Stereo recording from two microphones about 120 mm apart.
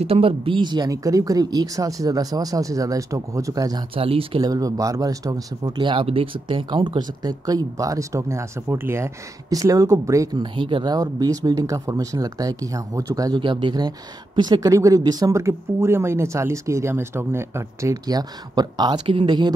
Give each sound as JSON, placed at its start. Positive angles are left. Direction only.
{"t": 0.0, "sound": "speech", "side_deg": -55}
{"t": 3.9, "sound": "speech", "side_deg": -50}
{"t": 4.4, "sound": "speech", "side_deg": -30}
{"t": 5.9, "sound": "speech", "side_deg": -50}
{"t": 10.4, "sound": "speech", "side_deg": -40}
{"t": 13.4, "sound": "speech", "side_deg": -45}
{"t": 18.0, "sound": "speech", "side_deg": -35}